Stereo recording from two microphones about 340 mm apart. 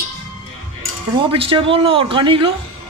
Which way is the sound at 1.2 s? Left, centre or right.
Centre.